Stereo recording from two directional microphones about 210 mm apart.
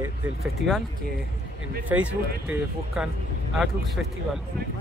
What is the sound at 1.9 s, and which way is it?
Speech, 5° right (ahead or behind).